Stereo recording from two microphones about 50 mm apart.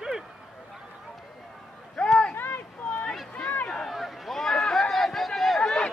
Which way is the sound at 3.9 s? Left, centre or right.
Centre.